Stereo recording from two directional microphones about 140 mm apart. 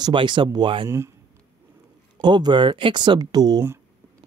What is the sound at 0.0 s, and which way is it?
Speech, 35° right (ahead or behind).